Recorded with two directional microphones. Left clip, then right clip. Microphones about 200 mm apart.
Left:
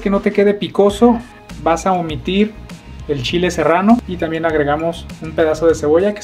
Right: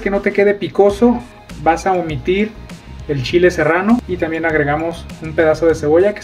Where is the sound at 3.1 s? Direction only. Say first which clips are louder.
Right 4 dB; 35° left (ahead or behind).